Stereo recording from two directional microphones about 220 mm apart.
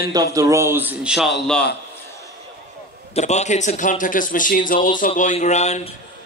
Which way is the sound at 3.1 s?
30° left (ahead or behind).